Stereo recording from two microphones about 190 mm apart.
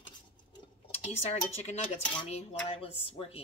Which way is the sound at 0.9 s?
35° left (ahead or behind).